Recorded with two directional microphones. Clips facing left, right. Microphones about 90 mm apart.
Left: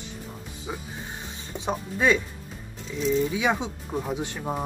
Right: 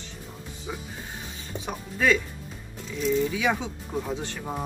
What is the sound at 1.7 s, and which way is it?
Speech, 20° left (ahead or behind).